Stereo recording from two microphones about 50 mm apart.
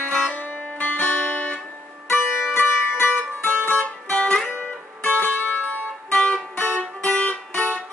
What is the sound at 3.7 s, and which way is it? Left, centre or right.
Music, left.